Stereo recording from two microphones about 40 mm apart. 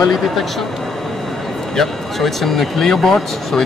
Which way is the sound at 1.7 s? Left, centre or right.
Centre.